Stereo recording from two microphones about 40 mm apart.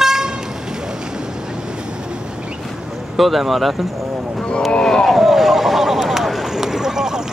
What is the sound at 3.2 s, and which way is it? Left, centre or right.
Speech, centre.